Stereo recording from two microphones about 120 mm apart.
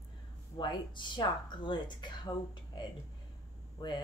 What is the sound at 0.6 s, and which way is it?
Speech, 40° left (ahead or behind).